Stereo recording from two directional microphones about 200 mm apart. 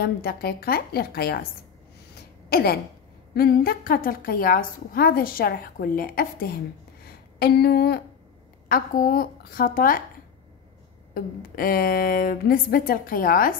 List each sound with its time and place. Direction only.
0.0 s a woman's voice: 50° left (ahead or behind)
2.5 s a woman's voice: 50° left (ahead or behind)
7.1 s a sound: 50° left (ahead or behind)
8.6 s a woman's voice: 45° left (ahead or behind)
11.1 s a woman's voice: 45° left (ahead or behind)